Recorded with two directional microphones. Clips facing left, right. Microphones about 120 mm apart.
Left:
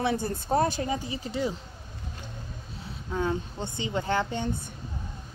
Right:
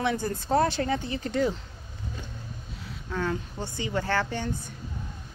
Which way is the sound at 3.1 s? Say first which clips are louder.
Left 1 dB; 20° left (ahead or behind).